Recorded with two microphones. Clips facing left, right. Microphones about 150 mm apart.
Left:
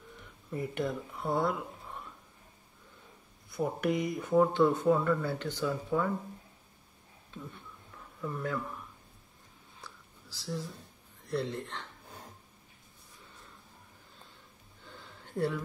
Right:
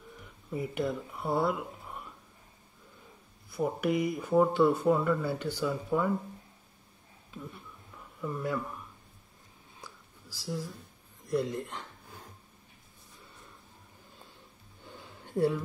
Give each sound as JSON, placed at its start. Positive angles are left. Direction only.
{"t": 0.2, "sound": "speech", "side_deg": -5}
{"t": 3.4, "sound": "speech", "side_deg": -5}
{"t": 7.2, "sound": "speech", "side_deg": -5}
{"t": 9.8, "sound": "whispering", "side_deg": -10}
{"t": 11.2, "sound": "speech", "side_deg": -10}
{"t": 14.9, "sound": "a sound", "side_deg": -15}